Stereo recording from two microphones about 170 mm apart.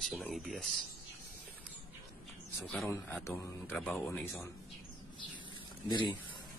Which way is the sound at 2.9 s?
15° left (ahead or behind).